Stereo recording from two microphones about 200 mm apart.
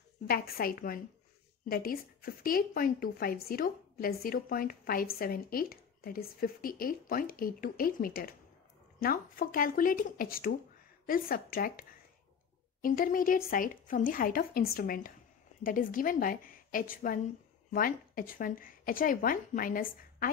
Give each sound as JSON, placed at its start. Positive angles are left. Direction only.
{"t": 0.3, "sound": "a woman's voice", "side_deg": 50}
{"t": 12.8, "sound": "a woman's voice", "side_deg": 45}